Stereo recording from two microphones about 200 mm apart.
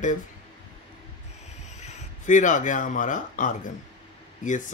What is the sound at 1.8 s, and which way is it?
Speech, 35° left (ahead or behind).